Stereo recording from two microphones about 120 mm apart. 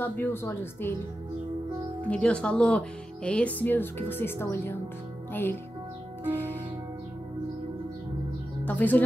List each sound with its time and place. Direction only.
0.0 s speech: 15° left (ahead or behind)
2.0 s speech: 10° left (ahead or behind)
6.3 s music: 15° left (ahead or behind)
8.6 s speech: 15° left (ahead or behind)